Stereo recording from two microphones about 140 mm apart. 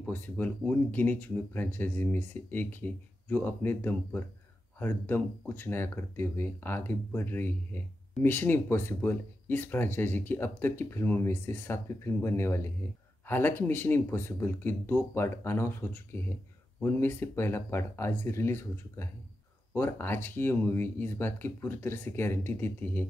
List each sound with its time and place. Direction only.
0.0 s speech: 10° left (ahead or behind)